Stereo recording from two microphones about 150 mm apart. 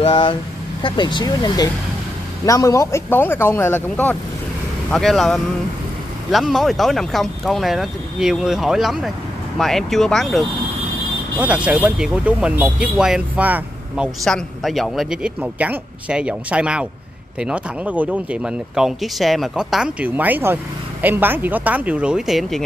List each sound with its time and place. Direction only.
0.0 s a man's voice: 35° left (ahead or behind); by 10.4 s centre (ahead or behind)
11.3 s a man's voice: 10° right (ahead or behind)